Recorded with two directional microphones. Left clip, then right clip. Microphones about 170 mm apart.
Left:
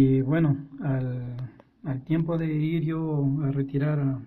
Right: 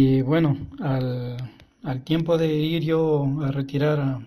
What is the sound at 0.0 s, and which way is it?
Speech, 10° right (ahead or behind).